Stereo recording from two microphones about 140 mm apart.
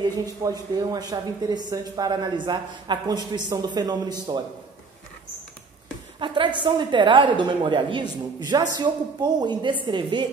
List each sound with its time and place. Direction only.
0.0 s speech: 25° right (ahead or behind)
6.1 s a woman's voice: 35° right (ahead or behind)